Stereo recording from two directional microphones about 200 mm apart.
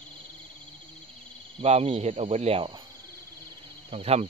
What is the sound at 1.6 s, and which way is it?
Speech, 30° right (ahead or behind).